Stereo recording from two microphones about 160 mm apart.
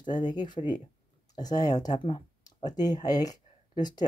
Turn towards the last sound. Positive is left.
turn(degrees=25)  # may be behind; listen again after turning